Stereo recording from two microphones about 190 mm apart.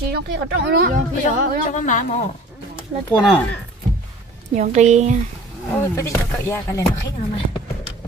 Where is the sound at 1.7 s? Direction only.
40° left (ahead or behind).